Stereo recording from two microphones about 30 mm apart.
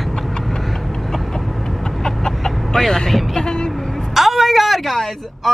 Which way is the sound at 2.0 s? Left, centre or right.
Left.